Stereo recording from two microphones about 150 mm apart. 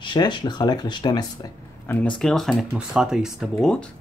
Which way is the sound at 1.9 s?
10° left (ahead or behind).